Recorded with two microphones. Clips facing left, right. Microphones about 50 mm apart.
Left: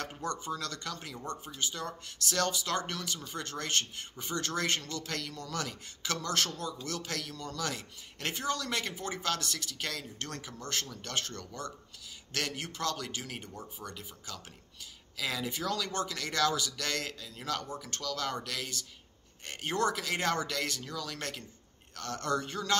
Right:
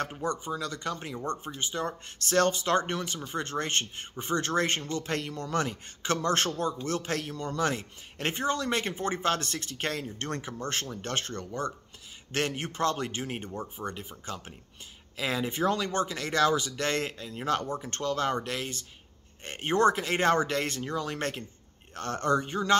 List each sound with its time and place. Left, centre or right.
0.1 s a man's voice: centre